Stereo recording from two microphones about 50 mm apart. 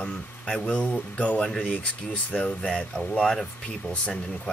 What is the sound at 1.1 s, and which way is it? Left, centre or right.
Speech, left.